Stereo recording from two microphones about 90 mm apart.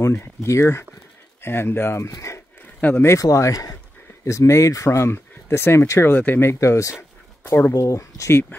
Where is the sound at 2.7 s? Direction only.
20° left (ahead or behind).